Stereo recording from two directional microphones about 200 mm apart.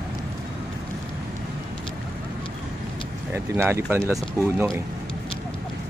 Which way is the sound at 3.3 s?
10° right (ahead or behind).